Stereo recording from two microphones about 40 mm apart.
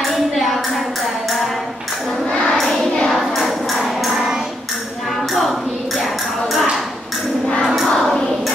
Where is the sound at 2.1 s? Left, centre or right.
Centre.